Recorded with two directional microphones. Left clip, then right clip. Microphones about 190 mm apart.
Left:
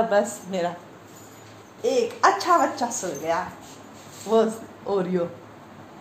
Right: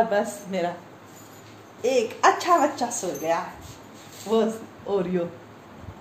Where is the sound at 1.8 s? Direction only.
5° left (ahead or behind).